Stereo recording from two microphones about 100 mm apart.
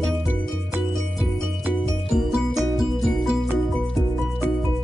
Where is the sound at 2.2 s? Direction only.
Centre (ahead or behind).